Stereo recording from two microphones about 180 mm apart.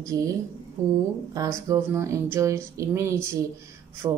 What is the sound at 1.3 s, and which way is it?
A woman's voice, 20° right (ahead or behind).